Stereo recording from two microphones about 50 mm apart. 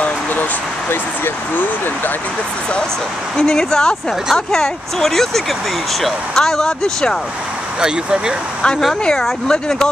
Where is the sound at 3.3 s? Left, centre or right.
Centre.